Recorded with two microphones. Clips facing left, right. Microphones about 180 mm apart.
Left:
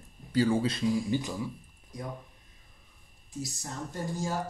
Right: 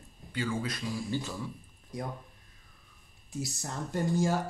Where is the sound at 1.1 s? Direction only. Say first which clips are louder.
Left 4 dB; 15° left (ahead or behind).